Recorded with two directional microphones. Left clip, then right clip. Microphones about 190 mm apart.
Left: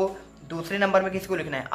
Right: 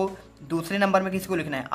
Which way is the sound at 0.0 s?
40° right (ahead or behind).